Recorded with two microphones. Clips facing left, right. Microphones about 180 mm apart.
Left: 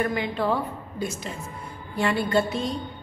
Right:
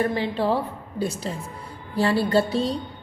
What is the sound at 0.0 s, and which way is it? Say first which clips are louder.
A woman's voice: right 2 dB; 30° right (ahead or behind).